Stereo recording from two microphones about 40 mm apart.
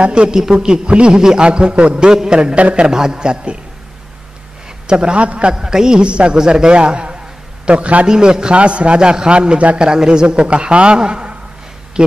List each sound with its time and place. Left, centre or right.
0.0 s a man's voice: right
4.8 s a man's voice: right
5.5 s a man's voice: centre; by 8.1 s right
8.1 s a man's voice: centre